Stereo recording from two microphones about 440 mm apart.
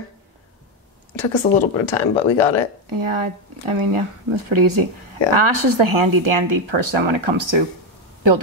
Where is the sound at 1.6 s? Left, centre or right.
Left.